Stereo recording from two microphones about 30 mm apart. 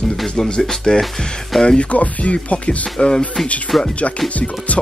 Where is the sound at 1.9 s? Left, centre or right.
Left.